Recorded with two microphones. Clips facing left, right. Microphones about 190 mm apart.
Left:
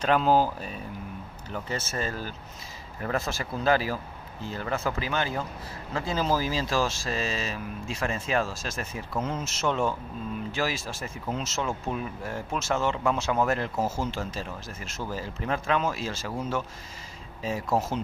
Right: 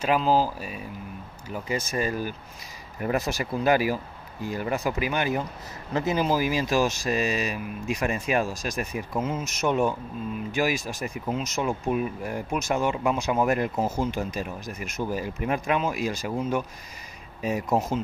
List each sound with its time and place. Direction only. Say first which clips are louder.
0.0 s speech: even; 5° right (ahead or behind)
17.4 s speech: right 2 dB; 15° right (ahead or behind)